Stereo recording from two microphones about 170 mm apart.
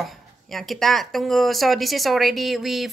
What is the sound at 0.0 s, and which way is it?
Speech, centre (ahead or behind).